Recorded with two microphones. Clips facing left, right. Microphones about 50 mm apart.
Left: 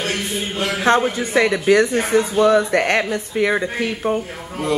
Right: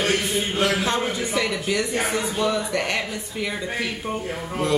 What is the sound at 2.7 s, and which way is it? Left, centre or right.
Speech, left.